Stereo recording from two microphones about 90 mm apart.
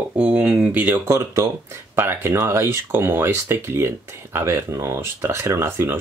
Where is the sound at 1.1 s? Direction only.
35° right (ahead or behind).